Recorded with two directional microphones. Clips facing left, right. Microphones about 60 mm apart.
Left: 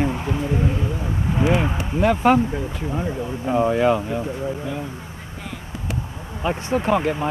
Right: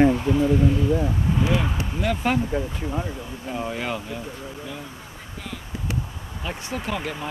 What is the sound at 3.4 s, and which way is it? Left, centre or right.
Speech, left.